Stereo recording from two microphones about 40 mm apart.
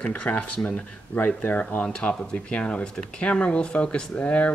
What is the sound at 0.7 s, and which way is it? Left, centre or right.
Speech, left.